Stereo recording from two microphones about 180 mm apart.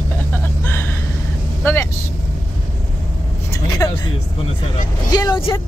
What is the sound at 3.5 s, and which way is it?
Speech, 15° left (ahead or behind).